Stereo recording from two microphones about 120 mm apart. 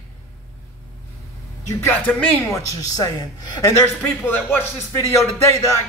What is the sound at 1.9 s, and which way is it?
Speech, 15° left (ahead or behind).